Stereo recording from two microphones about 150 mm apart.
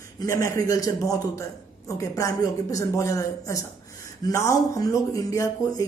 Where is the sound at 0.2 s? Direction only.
20° left (ahead or behind).